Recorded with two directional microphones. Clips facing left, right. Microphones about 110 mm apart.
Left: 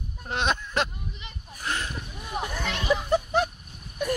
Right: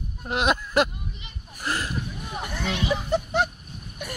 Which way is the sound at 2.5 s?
50° left (ahead or behind).